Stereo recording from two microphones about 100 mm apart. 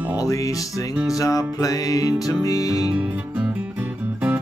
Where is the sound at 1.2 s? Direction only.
35° left (ahead or behind).